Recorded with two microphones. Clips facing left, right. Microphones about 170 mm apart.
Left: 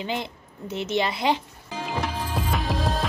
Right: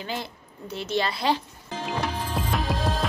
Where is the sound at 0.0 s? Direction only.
20° left (ahead or behind).